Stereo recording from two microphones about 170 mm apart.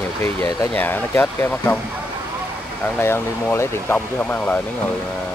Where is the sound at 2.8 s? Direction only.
15° left (ahead or behind).